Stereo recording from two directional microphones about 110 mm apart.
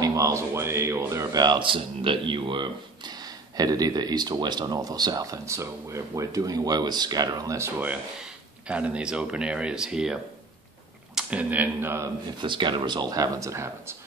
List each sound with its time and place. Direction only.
0.0 s speech: 30° right (ahead or behind)
7.8 s speech: 10° right (ahead or behind)
12.4 s speech: 45° right (ahead or behind); by 13.9 s 25° right (ahead or behind)